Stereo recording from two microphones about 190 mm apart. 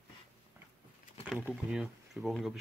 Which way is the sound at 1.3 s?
5° right (ahead or behind).